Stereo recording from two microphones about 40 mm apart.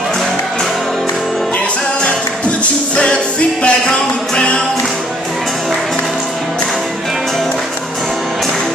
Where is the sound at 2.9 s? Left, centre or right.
Left.